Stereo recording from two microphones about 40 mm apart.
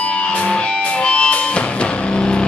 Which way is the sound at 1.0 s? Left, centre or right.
Left.